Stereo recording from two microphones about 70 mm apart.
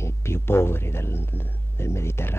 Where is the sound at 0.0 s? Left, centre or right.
Left.